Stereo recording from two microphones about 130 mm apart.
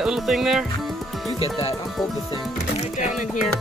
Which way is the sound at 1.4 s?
50° left (ahead or behind).